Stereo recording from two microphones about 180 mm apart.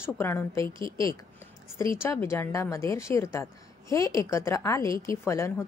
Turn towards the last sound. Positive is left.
turn(degrees=15)  # may be behind; listen again after turning